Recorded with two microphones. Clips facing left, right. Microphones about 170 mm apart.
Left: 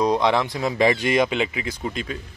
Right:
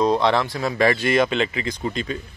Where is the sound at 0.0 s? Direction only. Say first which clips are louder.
Right 1 dB; 15° left (ahead or behind).